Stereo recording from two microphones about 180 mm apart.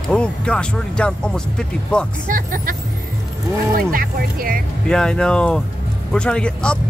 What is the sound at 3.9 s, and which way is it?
Speech, 55° right (ahead or behind).